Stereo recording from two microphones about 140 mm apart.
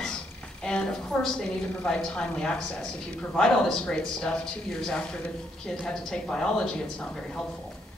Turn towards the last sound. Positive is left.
turn(degrees=5)  # may be behind; listen again after turning